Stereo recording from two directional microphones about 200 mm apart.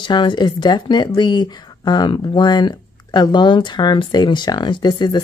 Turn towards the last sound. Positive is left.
turn(degrees=20)  # may be behind; listen again after turning